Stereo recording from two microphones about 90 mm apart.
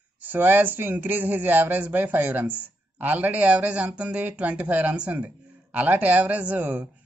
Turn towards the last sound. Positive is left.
turn(degrees=-20)  # may be behind; listen again after turning